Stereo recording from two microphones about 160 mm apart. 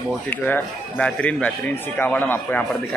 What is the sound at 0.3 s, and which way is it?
Speech, 5° left (ahead or behind).